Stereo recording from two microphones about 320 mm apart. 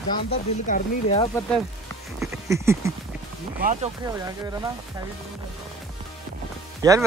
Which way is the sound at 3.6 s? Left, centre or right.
Right.